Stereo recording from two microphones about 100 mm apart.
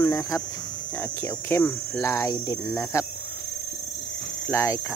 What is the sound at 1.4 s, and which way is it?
Speech, 20° left (ahead or behind).